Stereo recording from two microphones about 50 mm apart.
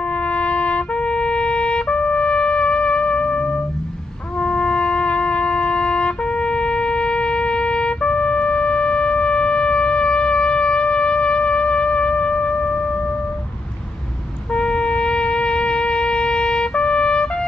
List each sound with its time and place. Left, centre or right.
0.2 s trumpet: left
14.5 s shofar: centre